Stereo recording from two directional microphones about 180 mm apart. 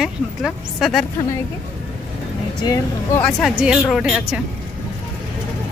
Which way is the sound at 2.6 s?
15° left (ahead or behind).